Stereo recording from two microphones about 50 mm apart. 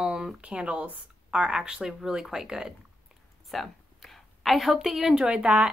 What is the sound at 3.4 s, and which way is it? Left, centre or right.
A woman's voice, centre.